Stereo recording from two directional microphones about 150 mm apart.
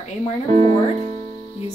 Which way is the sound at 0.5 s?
30° left (ahead or behind).